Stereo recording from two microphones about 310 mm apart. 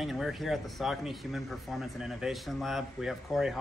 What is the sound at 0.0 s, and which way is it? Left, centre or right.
Speech, centre.